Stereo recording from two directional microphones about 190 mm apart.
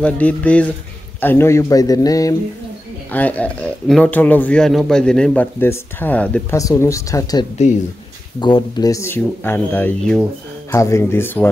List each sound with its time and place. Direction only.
0.0 s speech: 10° left (ahead or behind)
3.1 s speech: 10° left (ahead or behind)